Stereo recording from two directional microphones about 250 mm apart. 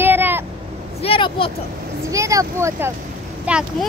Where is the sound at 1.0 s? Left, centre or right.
Left.